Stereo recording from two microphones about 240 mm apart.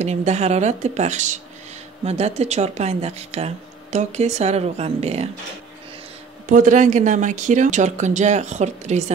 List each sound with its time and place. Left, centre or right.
0.0 s speech: right
6.4 s speech: right